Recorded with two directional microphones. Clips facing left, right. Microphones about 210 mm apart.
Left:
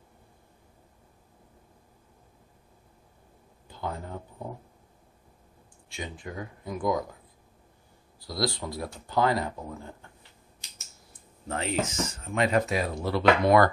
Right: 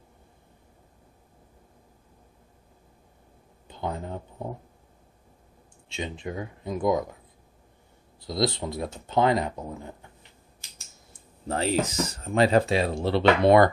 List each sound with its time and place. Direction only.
3.6 s a sound: 20° right (ahead or behind)
5.9 s speech: 25° right (ahead or behind)
8.2 s speech: 20° right (ahead or behind)
11.1 s speech: 35° right (ahead or behind)